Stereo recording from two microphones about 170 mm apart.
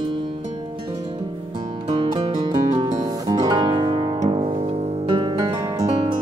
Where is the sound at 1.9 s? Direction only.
30° right (ahead or behind).